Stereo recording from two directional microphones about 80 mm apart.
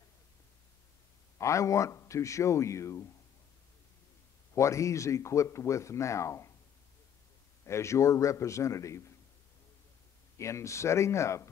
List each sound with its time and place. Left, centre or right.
1.4 s speech: left
4.6 s speech: left
7.6 s speech: left
10.3 s speech: left